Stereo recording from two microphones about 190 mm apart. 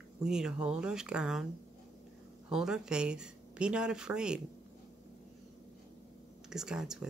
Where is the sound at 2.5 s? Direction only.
5° right (ahead or behind).